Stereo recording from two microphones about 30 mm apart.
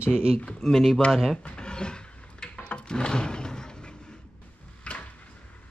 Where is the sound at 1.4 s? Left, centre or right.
Left.